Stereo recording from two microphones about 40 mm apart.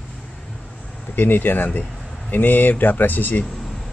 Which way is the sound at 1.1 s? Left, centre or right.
Left.